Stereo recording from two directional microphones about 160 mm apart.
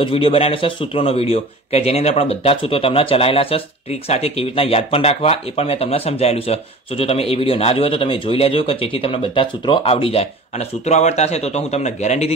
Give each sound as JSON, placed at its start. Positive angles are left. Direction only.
{"t": 0.0, "sound": "speech", "side_deg": 35}